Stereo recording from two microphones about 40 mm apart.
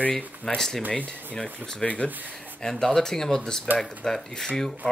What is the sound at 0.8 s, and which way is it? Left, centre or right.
Speech, left.